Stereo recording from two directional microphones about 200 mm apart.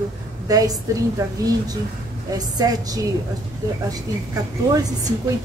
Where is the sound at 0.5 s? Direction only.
15° right (ahead or behind).